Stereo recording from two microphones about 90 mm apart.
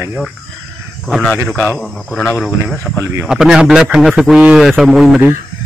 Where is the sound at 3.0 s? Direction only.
30° right (ahead or behind).